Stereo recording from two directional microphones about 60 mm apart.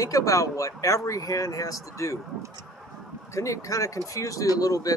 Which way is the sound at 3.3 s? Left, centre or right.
Left.